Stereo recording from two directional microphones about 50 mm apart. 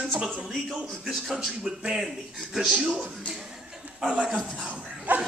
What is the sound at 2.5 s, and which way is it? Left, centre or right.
Speech, centre.